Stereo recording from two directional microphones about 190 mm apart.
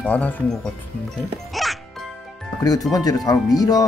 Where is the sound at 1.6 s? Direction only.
Centre (ahead or behind).